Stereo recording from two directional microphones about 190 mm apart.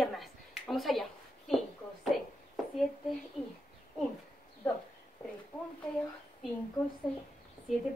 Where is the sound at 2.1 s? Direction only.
Centre (ahead or behind).